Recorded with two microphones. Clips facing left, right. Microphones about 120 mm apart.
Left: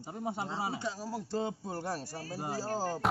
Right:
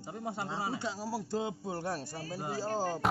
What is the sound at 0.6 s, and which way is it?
Speech, 20° left (ahead or behind).